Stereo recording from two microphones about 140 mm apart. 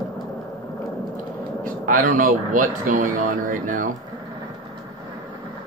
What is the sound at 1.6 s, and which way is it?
Speech, 70° right (ahead or behind).